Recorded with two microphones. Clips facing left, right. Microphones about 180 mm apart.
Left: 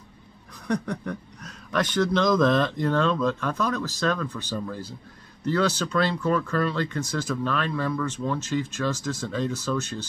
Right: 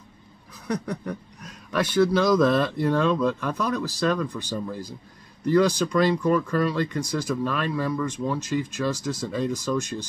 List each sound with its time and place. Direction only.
0.7 s speech: 10° right (ahead or behind)